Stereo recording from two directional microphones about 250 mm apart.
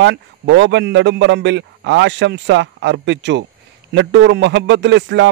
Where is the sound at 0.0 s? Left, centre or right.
Right.